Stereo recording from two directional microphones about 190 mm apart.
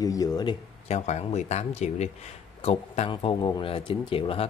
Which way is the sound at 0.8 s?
35° left (ahead or behind).